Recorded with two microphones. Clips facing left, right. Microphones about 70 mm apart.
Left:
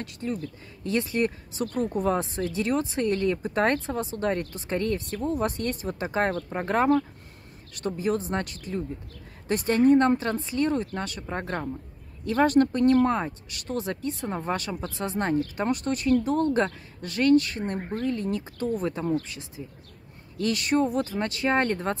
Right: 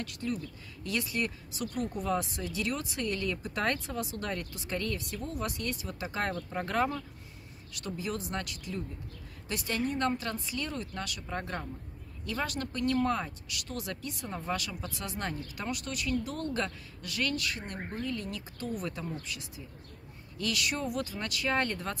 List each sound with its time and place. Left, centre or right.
0.2 s a woman's voice: left